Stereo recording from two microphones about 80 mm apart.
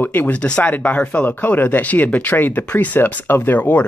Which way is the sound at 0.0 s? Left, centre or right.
Left.